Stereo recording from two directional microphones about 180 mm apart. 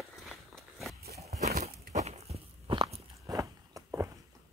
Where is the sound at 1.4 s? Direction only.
40° right (ahead or behind).